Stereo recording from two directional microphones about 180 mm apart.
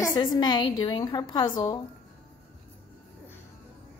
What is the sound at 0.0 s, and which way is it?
A woman's voice, 25° left (ahead or behind).